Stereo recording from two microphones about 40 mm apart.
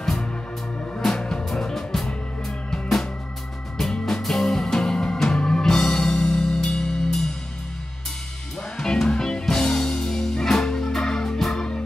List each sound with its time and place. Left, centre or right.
1.0 s music: centre
4.2 s music: centre
8.7 s music: centre